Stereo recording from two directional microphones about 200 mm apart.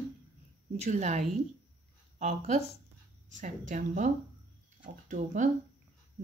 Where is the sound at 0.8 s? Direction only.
35° right (ahead or behind).